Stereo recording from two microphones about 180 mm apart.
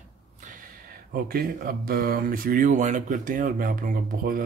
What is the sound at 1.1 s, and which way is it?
Speech, 55° right (ahead or behind).